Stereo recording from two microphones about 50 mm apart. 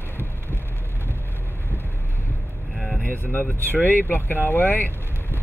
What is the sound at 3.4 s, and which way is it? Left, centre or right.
Speech, left.